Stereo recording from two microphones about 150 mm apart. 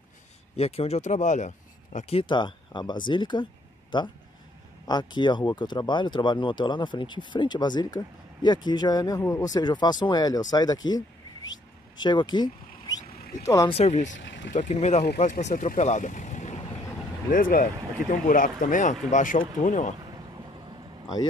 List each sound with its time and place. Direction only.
0.6 s speech: 40° left (ahead or behind); by 11.0 s 25° left (ahead or behind)
12.0 s speech: 30° left (ahead or behind)
13.7 s speech: 45° left (ahead or behind)
17.3 s speech: 65° left (ahead or behind)